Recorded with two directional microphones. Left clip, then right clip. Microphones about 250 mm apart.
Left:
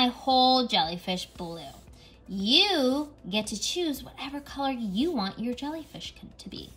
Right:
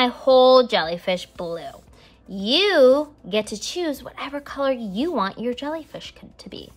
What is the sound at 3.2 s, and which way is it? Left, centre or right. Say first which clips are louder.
A woman's voice: right 6 dB; centre.